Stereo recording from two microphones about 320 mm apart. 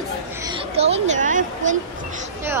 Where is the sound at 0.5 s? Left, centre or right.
Centre.